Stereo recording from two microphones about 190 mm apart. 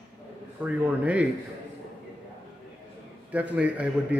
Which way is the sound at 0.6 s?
5° right (ahead or behind).